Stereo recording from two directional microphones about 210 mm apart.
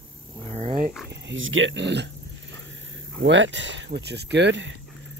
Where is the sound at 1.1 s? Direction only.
60° right (ahead or behind).